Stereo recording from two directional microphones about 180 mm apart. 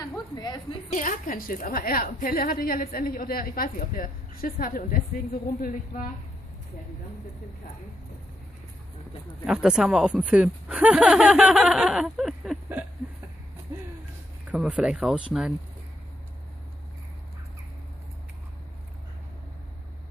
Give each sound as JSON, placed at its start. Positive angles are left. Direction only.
{"t": 0.0, "sound": "a sound", "side_deg": 20}
{"t": 0.9, "sound": "a woman's voice", "side_deg": 50}
{"t": 9.5, "sound": "speech", "side_deg": -5}
{"t": 14.5, "sound": "speech", "side_deg": -5}